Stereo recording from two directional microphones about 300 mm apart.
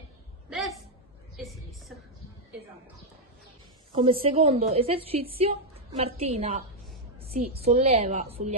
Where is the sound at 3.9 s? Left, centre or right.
Centre.